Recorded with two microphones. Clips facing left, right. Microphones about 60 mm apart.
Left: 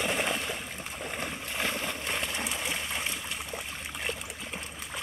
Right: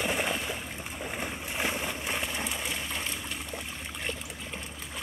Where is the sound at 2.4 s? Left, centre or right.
Centre.